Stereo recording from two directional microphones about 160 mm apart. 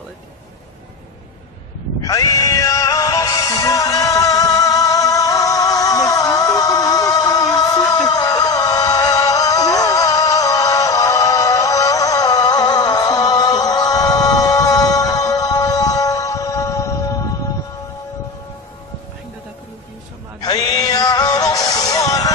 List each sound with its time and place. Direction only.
2.0 s music: 20° left (ahead or behind)
20.4 s music: 25° left (ahead or behind)